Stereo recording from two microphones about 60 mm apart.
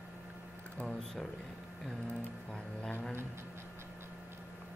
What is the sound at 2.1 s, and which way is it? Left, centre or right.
Speech, centre.